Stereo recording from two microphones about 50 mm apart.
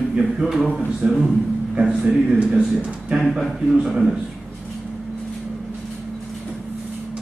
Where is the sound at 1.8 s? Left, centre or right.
Centre.